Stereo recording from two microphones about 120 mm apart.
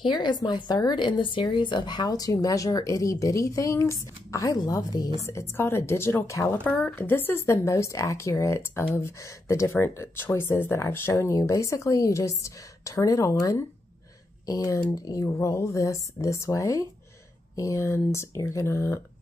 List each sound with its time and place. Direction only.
0.0 s speech: 40° left (ahead or behind)
5.3 s speech: 20° left (ahead or behind)
6.6 s speech: 15° left (ahead or behind)